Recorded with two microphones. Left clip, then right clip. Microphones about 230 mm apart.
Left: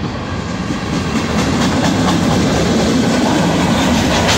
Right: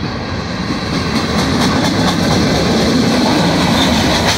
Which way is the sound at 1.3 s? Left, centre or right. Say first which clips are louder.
Right 1 dB; right.